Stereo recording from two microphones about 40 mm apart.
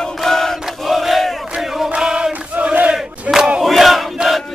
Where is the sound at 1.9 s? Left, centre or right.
Right.